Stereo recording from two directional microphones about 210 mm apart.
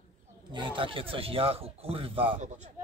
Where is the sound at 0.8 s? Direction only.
25° right (ahead or behind).